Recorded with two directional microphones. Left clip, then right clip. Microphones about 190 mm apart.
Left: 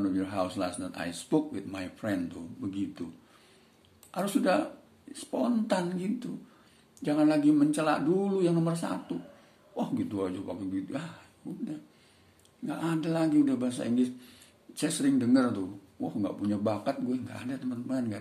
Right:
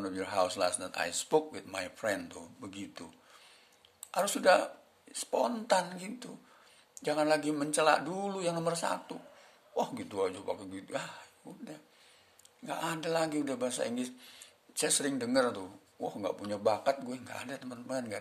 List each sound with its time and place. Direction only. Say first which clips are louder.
0.0 s a man's voice: left 1 dB; 45° right (ahead or behind)
4.1 s a man's voice: right 2 dB; 45° right (ahead or behind)